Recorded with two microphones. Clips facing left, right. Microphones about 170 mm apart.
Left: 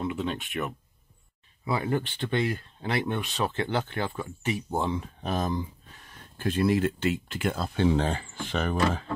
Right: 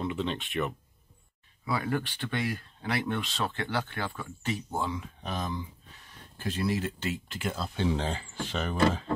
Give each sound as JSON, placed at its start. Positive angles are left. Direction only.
{"t": 0.0, "sound": "speech", "side_deg": 5}
{"t": 1.6, "sound": "speech", "side_deg": 20}
{"t": 5.0, "sound": "speech", "side_deg": 45}